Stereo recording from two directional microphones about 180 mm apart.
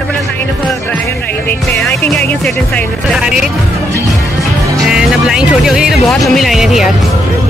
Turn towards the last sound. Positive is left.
turn(degrees=0)  # may be behind; listen again after turning